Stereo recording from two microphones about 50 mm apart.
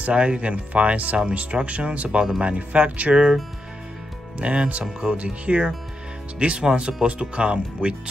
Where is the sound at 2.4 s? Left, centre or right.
Right.